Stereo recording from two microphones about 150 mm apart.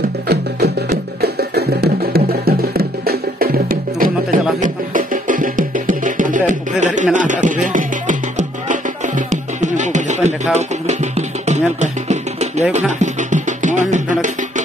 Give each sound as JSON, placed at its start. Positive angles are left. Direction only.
{"t": 1.2, "sound": "music", "side_deg": -90}